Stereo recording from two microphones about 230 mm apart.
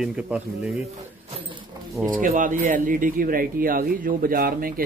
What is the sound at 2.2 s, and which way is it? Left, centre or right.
Speech, right.